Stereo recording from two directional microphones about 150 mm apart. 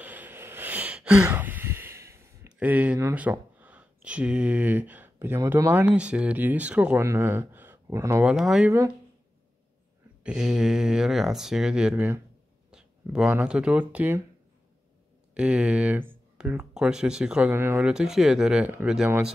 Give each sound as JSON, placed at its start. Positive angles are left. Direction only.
{"t": 0.0, "sound": "a sound", "side_deg": -10}
{"t": 7.0, "sound": "speech", "side_deg": -15}
{"t": 8.2, "sound": "speech", "side_deg": -5}
{"t": 10.2, "sound": "speech", "side_deg": -5}
{"t": 11.9, "sound": "speech", "side_deg": -15}
{"t": 12.7, "sound": "speech", "side_deg": -5}
{"t": 15.3, "sound": "speech", "side_deg": -10}
{"t": 17.8, "sound": "speech", "side_deg": -5}